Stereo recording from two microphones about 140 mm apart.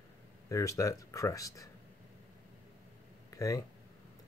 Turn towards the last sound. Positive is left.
turn(degrees=25)  # may be behind; listen again after turning